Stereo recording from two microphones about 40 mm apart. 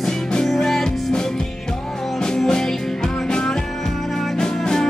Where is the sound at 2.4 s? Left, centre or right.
Centre.